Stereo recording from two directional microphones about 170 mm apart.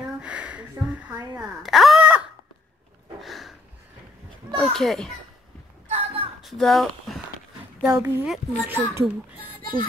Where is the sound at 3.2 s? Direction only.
Centre (ahead or behind).